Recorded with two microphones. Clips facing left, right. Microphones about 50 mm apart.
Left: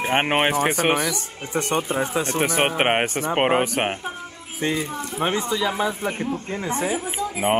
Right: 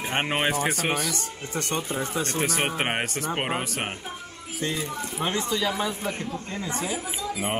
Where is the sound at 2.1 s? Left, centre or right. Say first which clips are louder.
Left 4 dB; centre.